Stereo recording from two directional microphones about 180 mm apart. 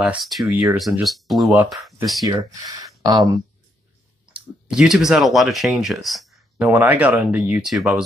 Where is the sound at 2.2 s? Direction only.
20° right (ahead or behind).